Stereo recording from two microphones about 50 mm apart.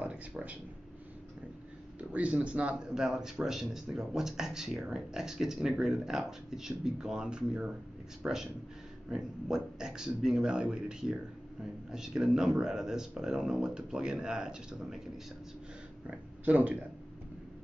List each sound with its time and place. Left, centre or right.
0.0 s a sound: right
2.0 s speech: right
16.1 s speech: right